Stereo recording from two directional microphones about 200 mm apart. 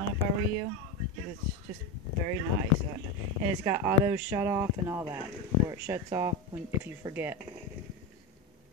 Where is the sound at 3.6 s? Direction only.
10° right (ahead or behind).